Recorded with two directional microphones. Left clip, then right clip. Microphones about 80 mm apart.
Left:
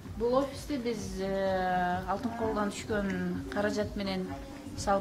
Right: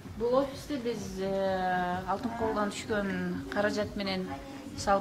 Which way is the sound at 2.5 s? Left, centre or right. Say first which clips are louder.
Right 1 dB; left.